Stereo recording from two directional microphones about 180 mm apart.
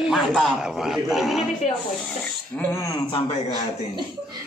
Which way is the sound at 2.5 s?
15° left (ahead or behind).